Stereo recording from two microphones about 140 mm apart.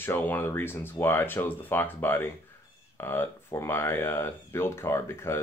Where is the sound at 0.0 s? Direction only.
15° left (ahead or behind).